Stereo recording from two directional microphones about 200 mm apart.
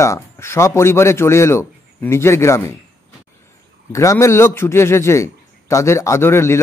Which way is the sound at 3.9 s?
15° left (ahead or behind).